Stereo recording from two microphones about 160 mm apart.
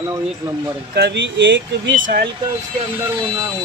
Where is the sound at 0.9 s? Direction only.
90° right.